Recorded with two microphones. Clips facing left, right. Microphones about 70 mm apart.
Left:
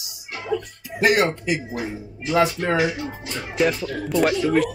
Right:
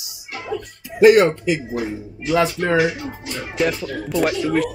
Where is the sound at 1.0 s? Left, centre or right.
Centre.